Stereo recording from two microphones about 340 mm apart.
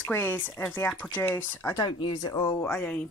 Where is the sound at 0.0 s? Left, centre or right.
Centre.